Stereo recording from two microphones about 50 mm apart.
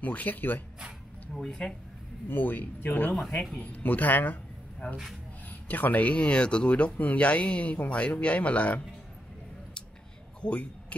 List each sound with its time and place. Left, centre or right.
0.0 s speech: left
1.3 s speech: centre
2.2 s speech: left
10.4 s speech: left